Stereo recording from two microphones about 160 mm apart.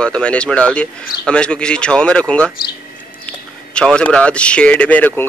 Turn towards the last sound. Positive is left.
turn(degrees=10)  # may be behind; listen again after turning